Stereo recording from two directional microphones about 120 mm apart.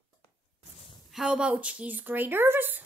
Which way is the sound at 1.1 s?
5° right (ahead or behind).